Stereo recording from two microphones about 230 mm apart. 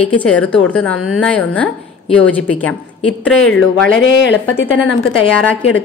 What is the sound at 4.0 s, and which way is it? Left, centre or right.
Speech, left.